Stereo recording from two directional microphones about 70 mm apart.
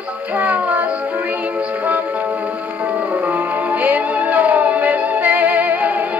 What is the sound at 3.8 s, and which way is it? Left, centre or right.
Music, right.